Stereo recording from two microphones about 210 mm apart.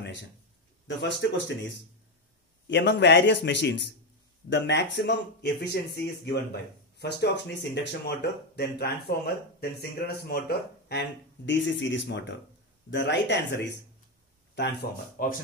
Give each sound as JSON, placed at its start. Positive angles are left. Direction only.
{"t": 0.8, "sound": "speech", "side_deg": 60}
{"t": 14.5, "sound": "speech", "side_deg": 50}